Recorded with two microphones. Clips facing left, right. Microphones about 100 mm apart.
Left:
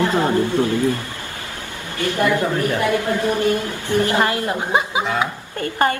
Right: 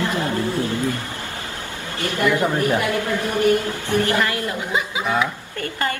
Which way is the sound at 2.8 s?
25° left (ahead or behind).